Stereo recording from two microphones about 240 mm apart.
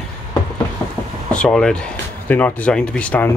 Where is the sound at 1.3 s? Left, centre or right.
Centre.